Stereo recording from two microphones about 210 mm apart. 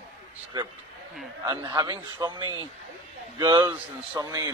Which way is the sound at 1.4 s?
20° right (ahead or behind).